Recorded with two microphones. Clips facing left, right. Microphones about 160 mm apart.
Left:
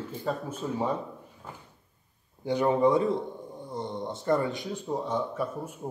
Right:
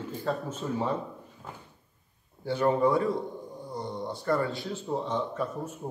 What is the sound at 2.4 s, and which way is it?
A man's voice, 15° left (ahead or behind).